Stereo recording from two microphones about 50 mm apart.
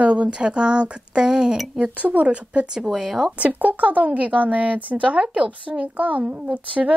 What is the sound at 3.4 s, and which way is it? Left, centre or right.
Speech, right.